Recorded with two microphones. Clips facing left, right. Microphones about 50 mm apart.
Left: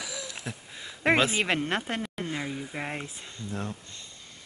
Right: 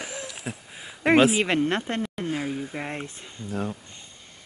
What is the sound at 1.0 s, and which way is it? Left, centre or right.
Speech, centre.